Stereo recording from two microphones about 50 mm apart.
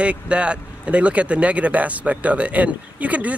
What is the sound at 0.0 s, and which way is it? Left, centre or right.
Speech, right.